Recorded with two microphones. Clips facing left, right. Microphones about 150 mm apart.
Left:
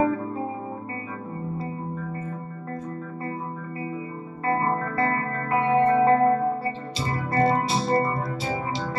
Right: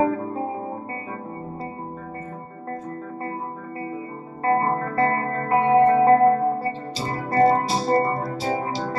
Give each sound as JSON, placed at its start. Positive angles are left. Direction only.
{"t": 4.5, "sound": "music", "side_deg": -40}